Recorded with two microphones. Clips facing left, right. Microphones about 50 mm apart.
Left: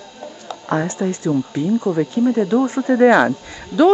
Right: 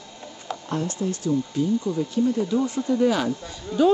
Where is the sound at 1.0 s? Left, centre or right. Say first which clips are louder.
Left 6 dB; left.